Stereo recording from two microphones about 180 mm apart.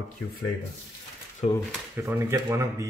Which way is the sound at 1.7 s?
10° right (ahead or behind).